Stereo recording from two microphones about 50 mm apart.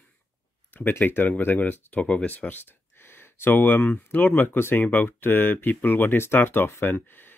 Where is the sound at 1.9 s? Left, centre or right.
Left.